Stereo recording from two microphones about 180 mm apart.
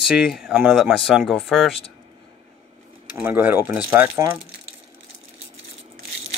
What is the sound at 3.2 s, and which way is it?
Speech, 10° right (ahead or behind).